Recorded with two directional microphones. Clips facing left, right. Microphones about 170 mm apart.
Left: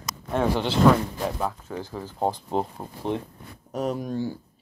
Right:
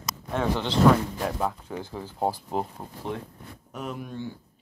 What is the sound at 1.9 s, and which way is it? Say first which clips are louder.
Speech: left 1 dB; 10° right (ahead or behind).